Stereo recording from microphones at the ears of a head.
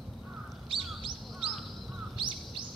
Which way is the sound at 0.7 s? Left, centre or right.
Right.